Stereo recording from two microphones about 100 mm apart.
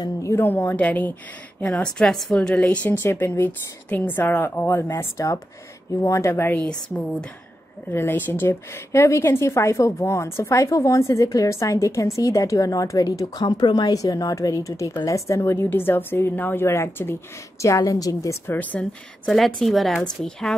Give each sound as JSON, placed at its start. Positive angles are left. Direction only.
{"t": 0.0, "sound": "a woman's voice", "side_deg": 30}
{"t": 4.9, "sound": "a woman's voice", "side_deg": 35}
{"t": 6.5, "sound": "a woman's voice", "side_deg": 10}
{"t": 7.9, "sound": "a woman's voice", "side_deg": 20}
{"t": 18.5, "sound": "a woman's voice", "side_deg": 15}